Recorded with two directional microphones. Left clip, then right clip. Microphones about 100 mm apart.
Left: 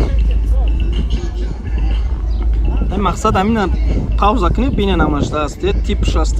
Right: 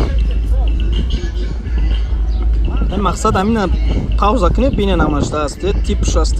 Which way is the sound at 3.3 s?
20° right (ahead or behind).